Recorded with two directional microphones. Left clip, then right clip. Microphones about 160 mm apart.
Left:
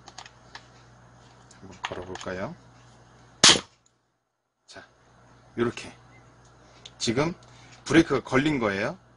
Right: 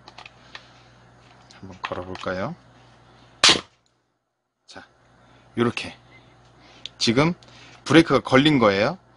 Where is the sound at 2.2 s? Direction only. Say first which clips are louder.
Right 7 dB; 60° right (ahead or behind).